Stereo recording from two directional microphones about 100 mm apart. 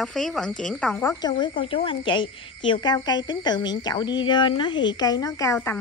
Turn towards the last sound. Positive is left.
turn(degrees=35)  # may be behind; listen again after turning